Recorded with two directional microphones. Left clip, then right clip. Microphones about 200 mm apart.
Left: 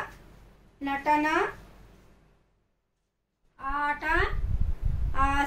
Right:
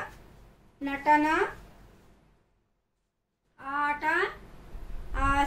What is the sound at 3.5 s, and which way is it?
Speech, 15° left (ahead or behind).